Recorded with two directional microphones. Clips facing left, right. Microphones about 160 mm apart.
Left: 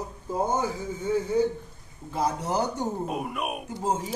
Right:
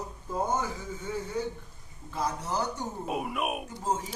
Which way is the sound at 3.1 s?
Centre (ahead or behind).